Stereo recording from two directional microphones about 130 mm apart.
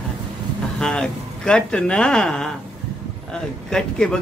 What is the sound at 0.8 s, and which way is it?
A man's voice, 5° left (ahead or behind).